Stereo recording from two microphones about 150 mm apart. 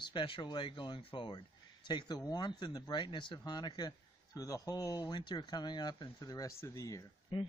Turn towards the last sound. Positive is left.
turn(degrees=25)  # may be behind; listen again after turning